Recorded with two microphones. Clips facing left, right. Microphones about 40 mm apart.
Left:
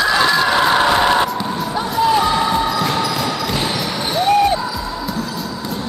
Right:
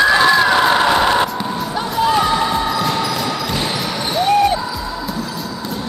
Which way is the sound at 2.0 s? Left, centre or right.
Centre.